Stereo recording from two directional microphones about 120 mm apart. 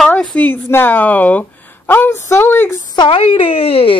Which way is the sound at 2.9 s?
45° left (ahead or behind).